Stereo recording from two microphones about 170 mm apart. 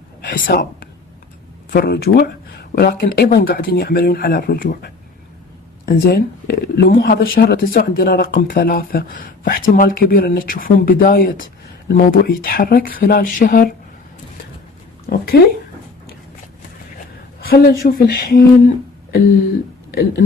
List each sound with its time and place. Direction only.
0.2 s speech: 65° left (ahead or behind)
1.7 s speech: 65° left (ahead or behind)
15.0 s speech: 70° left (ahead or behind)
17.4 s speech: 65° left (ahead or behind)
19.9 s speech: 70° left (ahead or behind)